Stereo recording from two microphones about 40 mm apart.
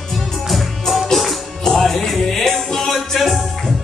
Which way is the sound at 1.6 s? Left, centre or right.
Centre.